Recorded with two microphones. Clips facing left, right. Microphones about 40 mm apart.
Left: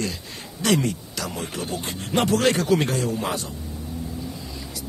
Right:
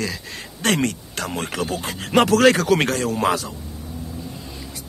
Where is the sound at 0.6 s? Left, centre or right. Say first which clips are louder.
Right 1 dB; right.